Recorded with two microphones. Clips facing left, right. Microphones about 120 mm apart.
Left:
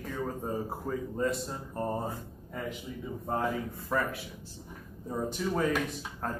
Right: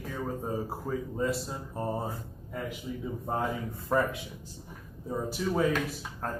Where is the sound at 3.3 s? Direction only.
25° right (ahead or behind).